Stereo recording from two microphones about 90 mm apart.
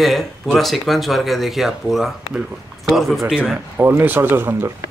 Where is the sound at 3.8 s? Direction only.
25° right (ahead or behind).